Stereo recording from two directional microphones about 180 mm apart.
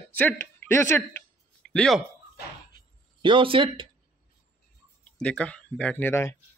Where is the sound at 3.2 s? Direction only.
30° right (ahead or behind).